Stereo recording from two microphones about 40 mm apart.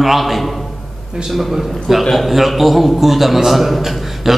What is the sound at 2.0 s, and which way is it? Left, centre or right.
A man's voice, centre.